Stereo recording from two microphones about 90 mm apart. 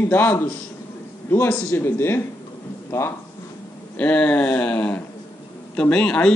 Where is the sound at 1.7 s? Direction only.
25° left (ahead or behind).